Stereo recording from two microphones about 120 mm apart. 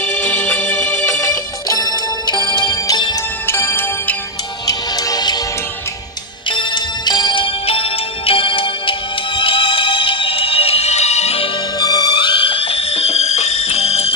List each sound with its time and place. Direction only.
0.0 s music: 15° left (ahead or behind); by 3.2 s 35° left (ahead or behind)
3.4 s music: 20° left (ahead or behind)
4.6 s music: 30° left (ahead or behind)
6.5 s music: 40° left (ahead or behind); by 11.4 s 65° left (ahead or behind)
11.8 s music: 35° left (ahead or behind); by 14.1 s 60° left (ahead or behind)